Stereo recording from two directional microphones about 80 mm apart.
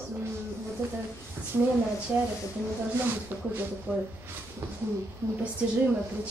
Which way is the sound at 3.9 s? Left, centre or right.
Right.